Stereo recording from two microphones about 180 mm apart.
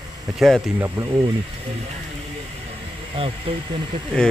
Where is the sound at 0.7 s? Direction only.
15° right (ahead or behind).